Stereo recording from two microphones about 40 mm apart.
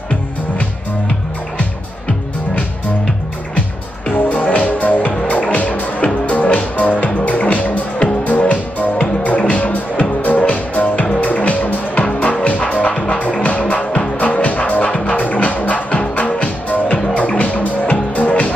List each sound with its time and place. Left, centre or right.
4.1 s music: left